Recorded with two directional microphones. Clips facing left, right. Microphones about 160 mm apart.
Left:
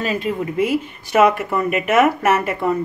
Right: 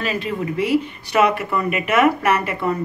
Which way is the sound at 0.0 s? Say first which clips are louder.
Left 2 dB; 50° left (ahead or behind).